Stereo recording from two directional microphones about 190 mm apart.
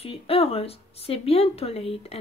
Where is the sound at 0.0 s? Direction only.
30° left (ahead or behind).